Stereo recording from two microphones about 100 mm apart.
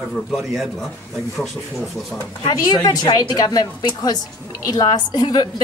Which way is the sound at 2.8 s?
40° left (ahead or behind).